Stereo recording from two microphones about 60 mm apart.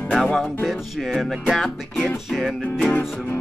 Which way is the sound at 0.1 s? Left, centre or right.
Centre.